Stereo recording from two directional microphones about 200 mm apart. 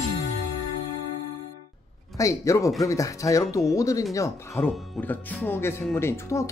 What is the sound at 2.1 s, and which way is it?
Speech, 15° left (ahead or behind).